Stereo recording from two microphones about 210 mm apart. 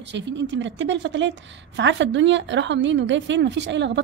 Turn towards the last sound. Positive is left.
turn(degrees=-55)  # may be behind; listen again after turning